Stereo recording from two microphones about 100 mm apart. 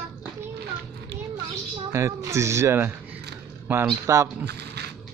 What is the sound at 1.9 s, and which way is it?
Speech, 30° right (ahead or behind).